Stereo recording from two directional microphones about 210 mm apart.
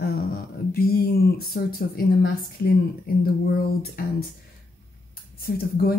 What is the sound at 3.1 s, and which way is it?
Speech, 45° left (ahead or behind).